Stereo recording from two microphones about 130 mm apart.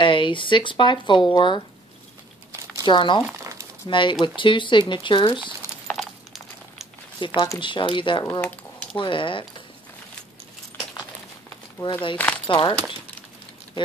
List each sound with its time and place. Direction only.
0.0 s speech: 40° left (ahead or behind)
2.8 s speech: 35° left (ahead or behind)
5.9 s a sound: centre (ahead or behind)
7.2 s speech: 40° left (ahead or behind)
11.8 s speech: 40° left (ahead or behind)